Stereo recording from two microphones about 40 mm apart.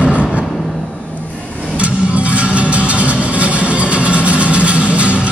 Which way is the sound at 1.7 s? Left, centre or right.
Right.